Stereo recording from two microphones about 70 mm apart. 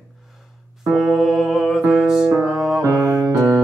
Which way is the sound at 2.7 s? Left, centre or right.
Right.